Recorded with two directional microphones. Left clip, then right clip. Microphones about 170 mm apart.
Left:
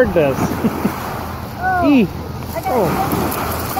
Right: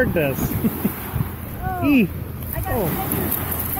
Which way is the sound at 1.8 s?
30° right (ahead or behind).